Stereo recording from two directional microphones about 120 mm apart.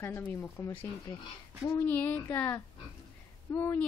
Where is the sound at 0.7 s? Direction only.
40° left (ahead or behind).